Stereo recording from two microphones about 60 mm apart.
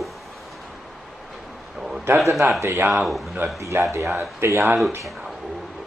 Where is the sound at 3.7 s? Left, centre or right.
Right.